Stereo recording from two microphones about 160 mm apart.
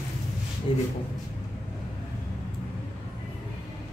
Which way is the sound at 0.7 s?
30° left (ahead or behind).